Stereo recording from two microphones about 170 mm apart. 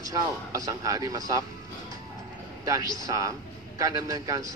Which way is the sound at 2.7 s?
20° right (ahead or behind).